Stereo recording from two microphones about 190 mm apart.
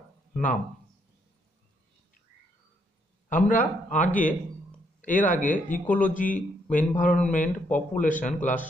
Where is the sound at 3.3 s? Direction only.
40° left (ahead or behind).